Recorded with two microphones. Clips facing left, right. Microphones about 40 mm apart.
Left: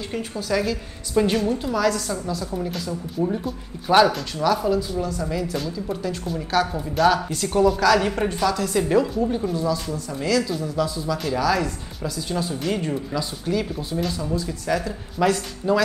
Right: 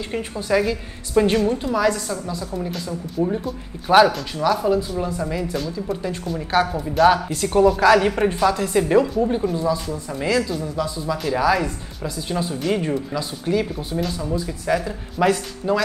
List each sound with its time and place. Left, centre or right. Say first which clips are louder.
0.1 s a woman's voice: right 4 dB; centre
4.7 s a woman's voice: right 2 dB; right
6.7 s a woman's voice: right 5 dB; centre
9.0 s speech: right 3 dB; centre
9.3 s a woman's voice: right 2 dB; centre
10.5 s a woman's voice: even; centre
12.4 s a woman's voice: right 3 dB; centre